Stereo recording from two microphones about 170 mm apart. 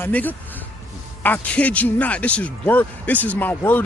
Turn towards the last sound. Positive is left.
turn(degrees=10)  # may be behind; listen again after turning